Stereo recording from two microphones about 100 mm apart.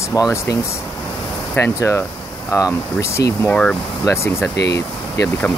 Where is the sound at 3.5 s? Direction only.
10° left (ahead or behind).